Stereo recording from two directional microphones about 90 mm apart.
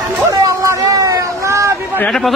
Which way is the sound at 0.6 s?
40° right (ahead or behind).